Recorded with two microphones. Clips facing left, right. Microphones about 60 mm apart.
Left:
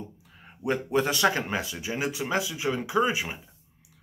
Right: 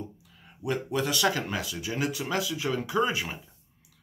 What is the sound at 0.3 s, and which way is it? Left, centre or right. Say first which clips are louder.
Speech: left 3 dB; left.